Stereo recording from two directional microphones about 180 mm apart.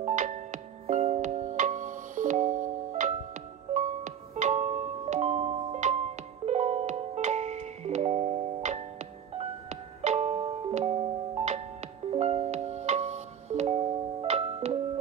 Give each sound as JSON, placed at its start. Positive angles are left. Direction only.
{"t": 0.0, "sound": "music", "side_deg": -40}